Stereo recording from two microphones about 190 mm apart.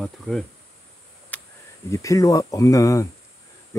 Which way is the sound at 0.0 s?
Centre (ahead or behind).